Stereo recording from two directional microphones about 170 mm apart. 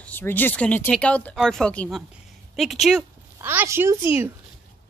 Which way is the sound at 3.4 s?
15° right (ahead or behind).